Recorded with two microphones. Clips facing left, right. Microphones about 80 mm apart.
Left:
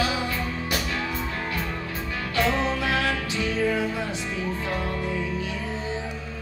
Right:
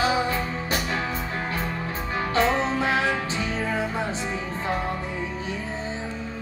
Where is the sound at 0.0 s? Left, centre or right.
Right.